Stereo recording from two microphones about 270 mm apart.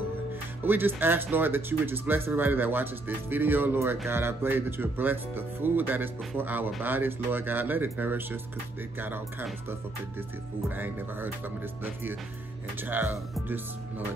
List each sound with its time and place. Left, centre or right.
0.7 s speech: centre
11.8 s speech: centre